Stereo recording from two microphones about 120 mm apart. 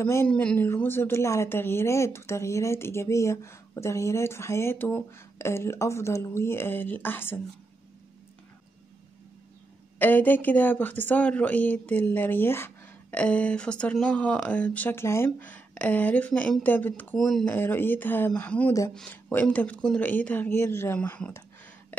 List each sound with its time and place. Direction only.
0.0 s speech: 20° left (ahead or behind)
0.3 s speech: 10° left (ahead or behind)
9.9 s speech: 15° left (ahead or behind)
17.5 s speech: 15° left (ahead or behind)